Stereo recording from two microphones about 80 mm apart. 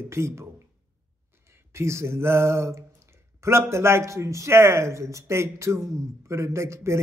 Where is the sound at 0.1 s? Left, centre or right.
Right.